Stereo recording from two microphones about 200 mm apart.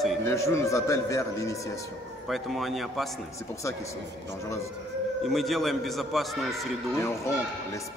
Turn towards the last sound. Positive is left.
turn(degrees=15)  # may be behind; listen again after turning